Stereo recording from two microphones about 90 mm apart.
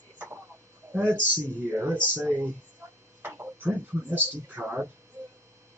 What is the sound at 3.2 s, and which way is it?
Speech, 20° right (ahead or behind).